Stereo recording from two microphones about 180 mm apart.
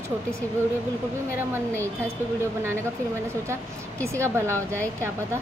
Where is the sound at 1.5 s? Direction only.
15° right (ahead or behind).